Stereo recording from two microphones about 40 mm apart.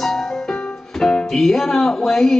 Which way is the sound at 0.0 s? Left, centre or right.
Centre.